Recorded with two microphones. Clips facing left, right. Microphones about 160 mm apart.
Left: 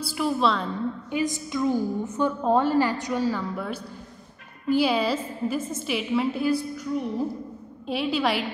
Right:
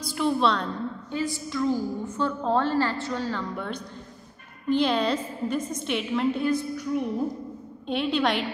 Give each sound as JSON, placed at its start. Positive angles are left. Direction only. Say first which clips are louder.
{"t": 0.0, "sound": "a woman's voice", "louder": "even", "side_deg": 5}
{"t": 1.1, "sound": "a woman's voice", "louder": "left 1 dB", "side_deg": 20}